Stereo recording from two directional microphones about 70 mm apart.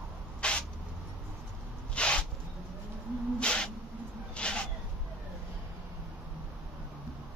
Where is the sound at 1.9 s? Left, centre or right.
Centre.